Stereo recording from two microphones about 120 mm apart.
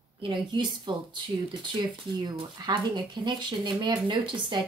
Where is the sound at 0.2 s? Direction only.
40° right (ahead or behind).